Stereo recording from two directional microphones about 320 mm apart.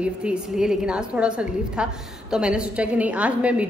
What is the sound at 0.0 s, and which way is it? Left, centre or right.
A woman's voice, centre.